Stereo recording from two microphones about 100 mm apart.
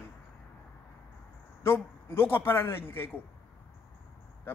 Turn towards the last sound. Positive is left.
turn(degrees=25)  # may be behind; listen again after turning